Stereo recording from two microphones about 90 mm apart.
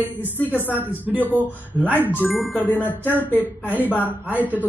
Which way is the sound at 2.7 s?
20° left (ahead or behind).